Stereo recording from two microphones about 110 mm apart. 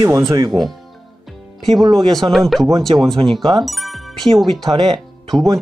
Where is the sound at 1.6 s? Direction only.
Centre (ahead or behind).